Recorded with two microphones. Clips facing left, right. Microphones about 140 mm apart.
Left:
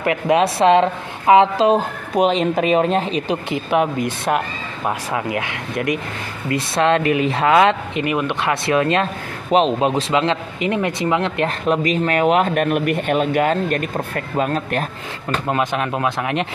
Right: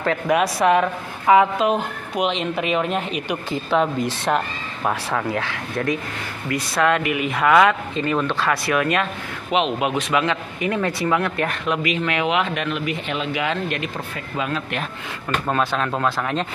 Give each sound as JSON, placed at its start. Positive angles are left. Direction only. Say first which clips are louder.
{"t": 0.0, "sound": "speech", "louder": "left 3 dB", "side_deg": 15}
{"t": 0.4, "sound": "speech", "louder": "left 5 dB", "side_deg": 25}
{"t": 3.5, "sound": "speech", "louder": "left 1 dB", "side_deg": 15}
{"t": 6.5, "sound": "speech", "louder": "left 3 dB", "side_deg": 25}
{"t": 11.6, "sound": "speech", "louder": "left 6 dB", "side_deg": 40}
{"t": 15.4, "sound": "speech", "louder": "left 1 dB", "side_deg": 15}